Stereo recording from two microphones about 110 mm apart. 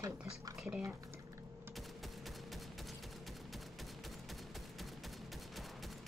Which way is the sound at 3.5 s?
Centre (ahead or behind).